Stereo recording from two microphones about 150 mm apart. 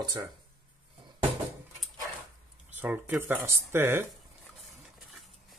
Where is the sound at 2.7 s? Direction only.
10° right (ahead or behind).